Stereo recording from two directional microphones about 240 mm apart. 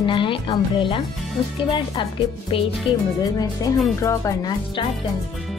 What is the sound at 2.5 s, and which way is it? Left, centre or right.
Speech, left.